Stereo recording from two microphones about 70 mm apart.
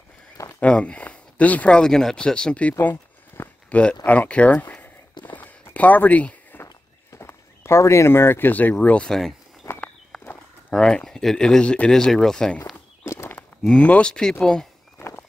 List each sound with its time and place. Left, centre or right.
0.6 s speech: centre
1.8 s speech: centre
2.8 s a sound: left
5.2 s walk: left
6.6 s walk: left
9.0 s speech: centre
9.6 s walk: left
10.7 s speech: centre
13.0 s walk: left
13.6 s speech: centre
15.0 s walk: left